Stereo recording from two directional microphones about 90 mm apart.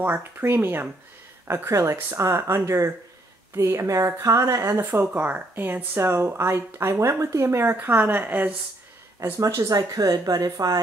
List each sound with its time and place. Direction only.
0.0 s speech: 25° right (ahead or behind)
4.7 s speech: 25° right (ahead or behind)
9.4 s speech: 40° right (ahead or behind)